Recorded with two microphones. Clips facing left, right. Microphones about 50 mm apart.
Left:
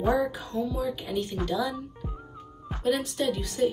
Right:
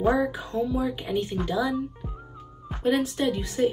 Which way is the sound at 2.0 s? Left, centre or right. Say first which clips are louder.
Even; centre.